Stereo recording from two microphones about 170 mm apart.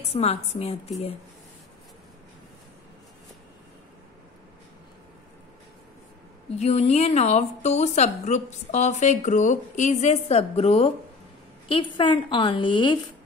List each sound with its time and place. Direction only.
0.1 s a woman's voice: 35° left (ahead or behind)
6.5 s a woman's voice: 40° left (ahead or behind)